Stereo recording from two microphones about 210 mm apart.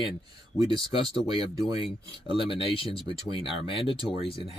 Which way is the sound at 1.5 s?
20° right (ahead or behind).